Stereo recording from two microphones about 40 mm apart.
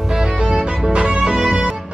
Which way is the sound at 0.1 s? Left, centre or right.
Centre.